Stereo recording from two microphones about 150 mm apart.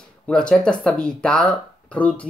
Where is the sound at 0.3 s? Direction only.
5° left (ahead or behind).